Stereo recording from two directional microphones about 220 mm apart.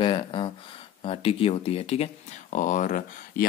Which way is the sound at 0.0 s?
20° left (ahead or behind).